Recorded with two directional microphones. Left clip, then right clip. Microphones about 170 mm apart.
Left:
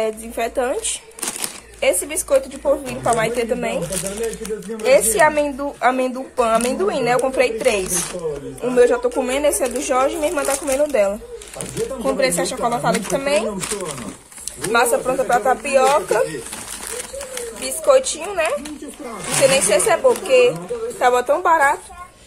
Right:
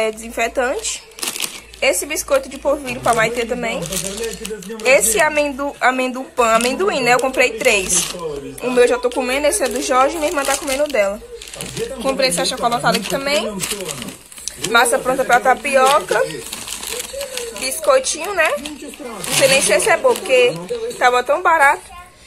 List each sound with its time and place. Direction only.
0.0 s speech: 5° left (ahead or behind)
1.8 s speech: 5° left (ahead or behind)
3.3 s a woman's voice: 10° left (ahead or behind)
4.8 s a woman's voice: 5° left (ahead or behind)
10.9 s a woman's voice: 15° left (ahead or behind)
12.0 s speech: 5° left (ahead or behind)
14.7 s speech: centre (ahead or behind)
15.6 s a woman's voice: 10° left (ahead or behind)
17.6 s speech: centre (ahead or behind)
19.8 s speech: 5° right (ahead or behind)
21.0 s a woman's voice: 15° left (ahead or behind)